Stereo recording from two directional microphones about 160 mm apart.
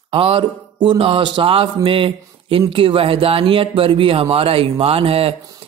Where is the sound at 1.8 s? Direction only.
35° right (ahead or behind).